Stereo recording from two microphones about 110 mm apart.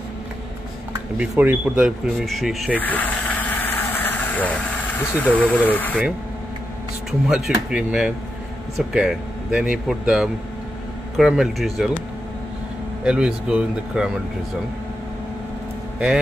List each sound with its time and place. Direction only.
1.4 s speech: 15° right (ahead or behind)
2.1 s speech: centre (ahead or behind)
2.7 s vehicle: 15° left (ahead or behind)
5.1 s speech: 15° left (ahead or behind)
7.1 s speech: 5° right (ahead or behind)
13.0 s speech: 10° right (ahead or behind)